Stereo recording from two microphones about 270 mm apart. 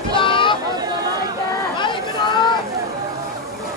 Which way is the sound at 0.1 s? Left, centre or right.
Centre.